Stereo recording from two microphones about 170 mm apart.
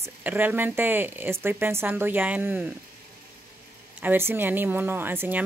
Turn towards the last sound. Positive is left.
turn(degrees=-10)  # may be behind; listen again after turning